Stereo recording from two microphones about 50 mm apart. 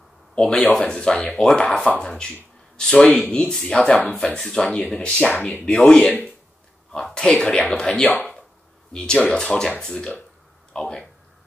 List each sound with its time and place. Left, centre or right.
0.4 s speech: centre
3.1 s speech: left
5.9 s speech: centre
8.0 s speech: left
8.9 s speech: centre